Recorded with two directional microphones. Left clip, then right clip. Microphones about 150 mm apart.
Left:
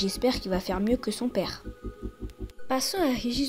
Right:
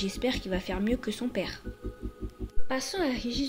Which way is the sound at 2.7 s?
35° left (ahead or behind).